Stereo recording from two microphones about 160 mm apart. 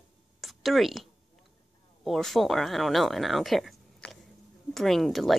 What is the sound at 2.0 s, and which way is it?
Speech, centre (ahead or behind).